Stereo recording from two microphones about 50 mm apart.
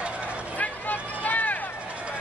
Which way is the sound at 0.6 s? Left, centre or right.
Left.